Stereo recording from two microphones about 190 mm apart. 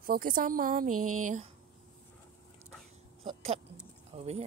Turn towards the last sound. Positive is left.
turn(degrees=-35)  # may be behind; listen again after turning